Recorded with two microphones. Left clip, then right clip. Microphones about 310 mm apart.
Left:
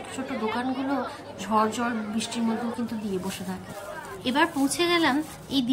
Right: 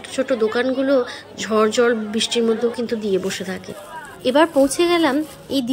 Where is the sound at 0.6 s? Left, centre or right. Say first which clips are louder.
Right 10 dB; centre.